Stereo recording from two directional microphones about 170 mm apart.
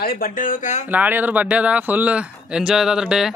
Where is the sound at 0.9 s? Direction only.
10° right (ahead or behind).